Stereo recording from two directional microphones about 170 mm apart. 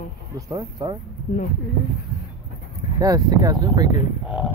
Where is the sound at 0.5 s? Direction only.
25° right (ahead or behind).